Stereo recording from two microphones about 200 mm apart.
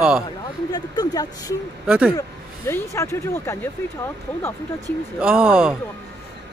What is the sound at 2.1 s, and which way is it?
Speech, 15° left (ahead or behind).